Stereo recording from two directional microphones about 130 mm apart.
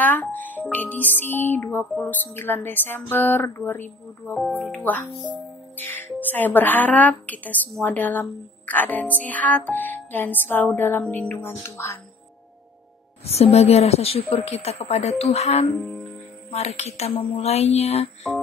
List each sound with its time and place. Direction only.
0.0 s speech: 15° left (ahead or behind)
4.4 s speech: centre (ahead or behind); by 12.0 s 20° left (ahead or behind)
13.2 s a woman's voice: 50° left (ahead or behind)